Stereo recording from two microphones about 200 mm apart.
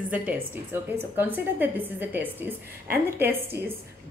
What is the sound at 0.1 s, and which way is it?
A woman's voice, 10° right (ahead or behind).